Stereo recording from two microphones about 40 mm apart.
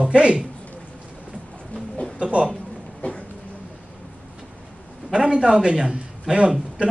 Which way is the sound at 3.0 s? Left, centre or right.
Left.